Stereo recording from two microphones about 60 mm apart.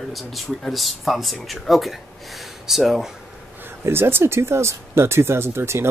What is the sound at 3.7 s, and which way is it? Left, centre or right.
Speech, right.